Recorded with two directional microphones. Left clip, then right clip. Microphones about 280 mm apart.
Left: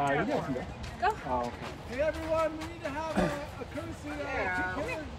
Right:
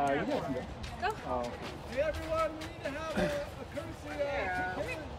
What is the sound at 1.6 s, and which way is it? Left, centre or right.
Speech, left.